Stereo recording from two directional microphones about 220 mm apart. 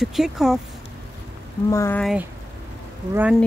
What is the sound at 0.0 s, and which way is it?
Speech, centre (ahead or behind).